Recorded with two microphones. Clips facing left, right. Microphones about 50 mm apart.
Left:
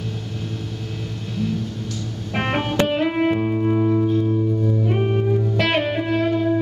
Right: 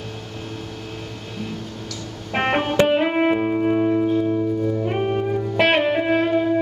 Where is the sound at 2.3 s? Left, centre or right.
Centre.